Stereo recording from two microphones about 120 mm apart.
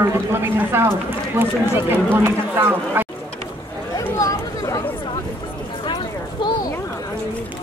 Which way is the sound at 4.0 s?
30° left (ahead or behind).